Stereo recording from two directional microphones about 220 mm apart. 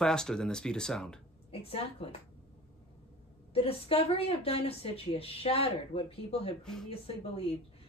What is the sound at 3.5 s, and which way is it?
A woman's voice, 25° left (ahead or behind).